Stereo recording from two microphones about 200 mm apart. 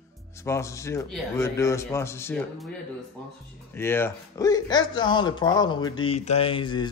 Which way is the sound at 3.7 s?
10° left (ahead or behind).